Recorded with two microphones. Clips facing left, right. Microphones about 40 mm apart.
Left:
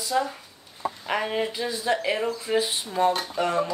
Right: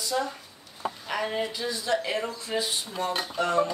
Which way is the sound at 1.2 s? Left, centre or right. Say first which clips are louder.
Even; centre.